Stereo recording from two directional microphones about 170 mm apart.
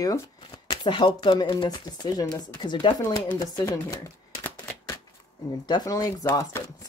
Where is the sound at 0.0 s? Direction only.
20° left (ahead or behind).